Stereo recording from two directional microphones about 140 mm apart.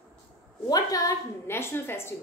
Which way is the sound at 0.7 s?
25° left (ahead or behind).